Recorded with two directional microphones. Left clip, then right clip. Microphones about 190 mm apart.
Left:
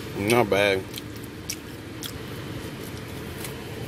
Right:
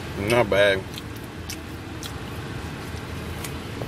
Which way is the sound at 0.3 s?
20° left (ahead or behind).